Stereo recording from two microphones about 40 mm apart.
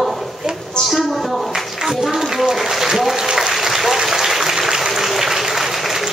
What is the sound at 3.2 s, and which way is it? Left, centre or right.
Applause, centre.